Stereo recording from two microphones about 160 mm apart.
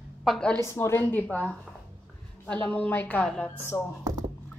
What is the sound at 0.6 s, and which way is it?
Speech, 15° left (ahead or behind).